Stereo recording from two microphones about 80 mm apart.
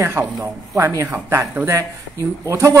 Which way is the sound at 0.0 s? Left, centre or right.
Right.